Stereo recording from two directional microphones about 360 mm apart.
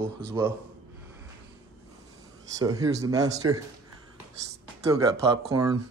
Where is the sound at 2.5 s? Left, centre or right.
Centre.